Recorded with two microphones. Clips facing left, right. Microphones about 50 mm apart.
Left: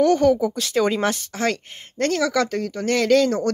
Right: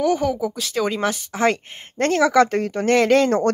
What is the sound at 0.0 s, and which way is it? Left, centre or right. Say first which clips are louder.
Speech: left 4 dB; centre.